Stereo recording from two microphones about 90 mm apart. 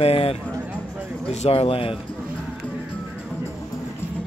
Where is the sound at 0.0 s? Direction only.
90° left.